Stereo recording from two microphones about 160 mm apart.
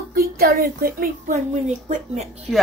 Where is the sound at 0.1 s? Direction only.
70° right (ahead or behind); by 2.2 s 45° right (ahead or behind).